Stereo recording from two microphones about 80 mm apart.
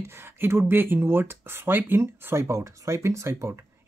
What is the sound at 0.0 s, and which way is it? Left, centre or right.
Speech, right.